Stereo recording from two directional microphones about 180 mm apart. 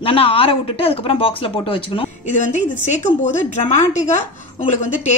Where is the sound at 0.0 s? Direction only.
30° left (ahead or behind).